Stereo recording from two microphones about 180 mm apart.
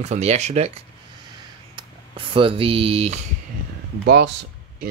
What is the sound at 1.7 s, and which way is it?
Speech, 30° right (ahead or behind).